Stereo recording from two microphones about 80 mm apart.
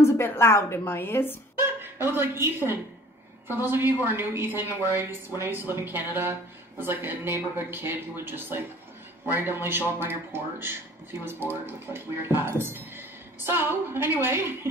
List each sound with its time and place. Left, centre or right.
0.0 s a woman's voice: left
1.6 s a woman's voice: right